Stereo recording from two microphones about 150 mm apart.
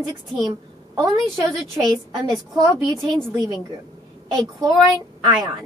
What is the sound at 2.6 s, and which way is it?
Speech, 30° right (ahead or behind).